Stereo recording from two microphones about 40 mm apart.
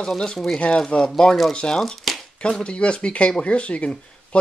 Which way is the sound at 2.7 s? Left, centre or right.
Left.